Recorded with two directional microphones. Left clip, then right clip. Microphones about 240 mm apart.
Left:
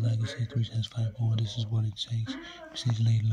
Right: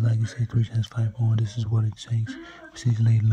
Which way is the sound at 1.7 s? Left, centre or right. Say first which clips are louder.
Right 6 dB; right.